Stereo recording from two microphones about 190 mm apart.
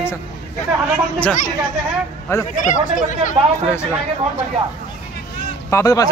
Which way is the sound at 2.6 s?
40° left (ahead or behind).